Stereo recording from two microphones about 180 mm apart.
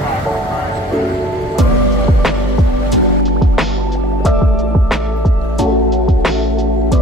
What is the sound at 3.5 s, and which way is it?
Music, centre (ahead or behind).